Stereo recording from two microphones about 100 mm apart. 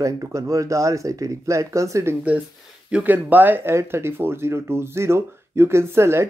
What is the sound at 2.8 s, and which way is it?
Speech, 15° right (ahead or behind).